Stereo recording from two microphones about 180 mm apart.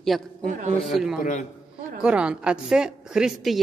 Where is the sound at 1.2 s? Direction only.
40° left (ahead or behind).